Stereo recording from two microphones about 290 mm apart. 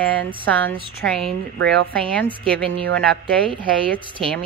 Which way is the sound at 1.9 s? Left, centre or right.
Centre.